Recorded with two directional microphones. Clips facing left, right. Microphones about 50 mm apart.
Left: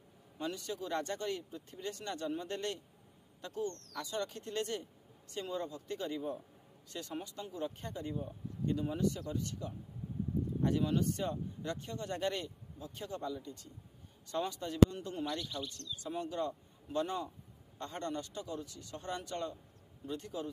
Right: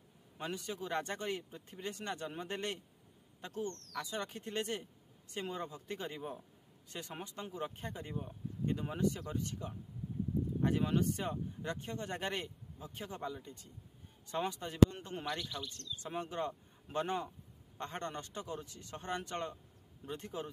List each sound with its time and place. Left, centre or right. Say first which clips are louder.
0.4 s a man's voice: left 1 dB; right